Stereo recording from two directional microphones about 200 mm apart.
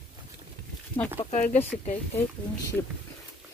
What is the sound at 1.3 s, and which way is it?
Speech, 35° left (ahead or behind).